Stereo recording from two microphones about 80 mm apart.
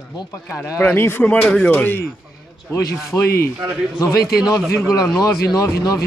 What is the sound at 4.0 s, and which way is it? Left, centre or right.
Speech, left.